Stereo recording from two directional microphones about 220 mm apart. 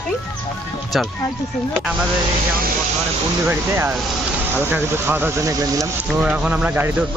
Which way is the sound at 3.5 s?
10° right (ahead or behind).